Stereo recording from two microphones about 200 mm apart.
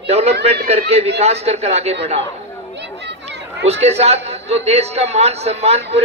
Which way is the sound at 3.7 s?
30° right (ahead or behind).